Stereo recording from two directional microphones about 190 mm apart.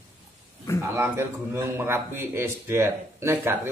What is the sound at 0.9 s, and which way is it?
A man's voice, 10° right (ahead or behind).